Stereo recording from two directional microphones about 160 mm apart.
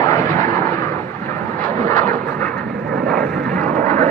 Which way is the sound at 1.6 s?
10° left (ahead or behind).